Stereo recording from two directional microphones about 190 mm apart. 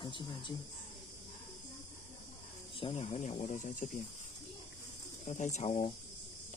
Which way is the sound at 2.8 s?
35° left (ahead or behind).